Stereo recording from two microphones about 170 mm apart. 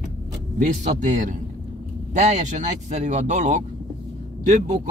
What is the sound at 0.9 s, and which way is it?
A man's voice, 45° right (ahead or behind).